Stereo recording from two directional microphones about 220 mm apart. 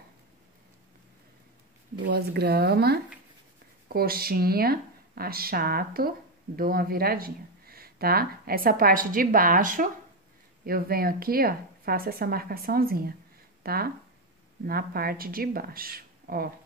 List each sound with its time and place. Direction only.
2.0 s speech: 45° right (ahead or behind)
13.6 s a sound: 45° right (ahead or behind)
14.7 s speech: 45° right (ahead or behind)